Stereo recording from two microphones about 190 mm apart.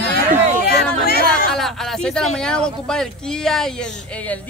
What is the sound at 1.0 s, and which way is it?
Chatter, 55° left (ahead or behind).